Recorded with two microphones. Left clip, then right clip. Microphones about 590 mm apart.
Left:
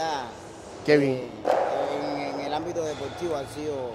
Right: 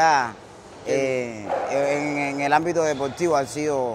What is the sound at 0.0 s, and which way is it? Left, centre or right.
Speech, right.